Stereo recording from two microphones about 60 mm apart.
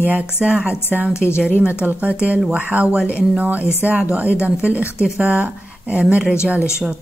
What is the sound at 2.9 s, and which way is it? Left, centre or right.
A woman's voice, centre.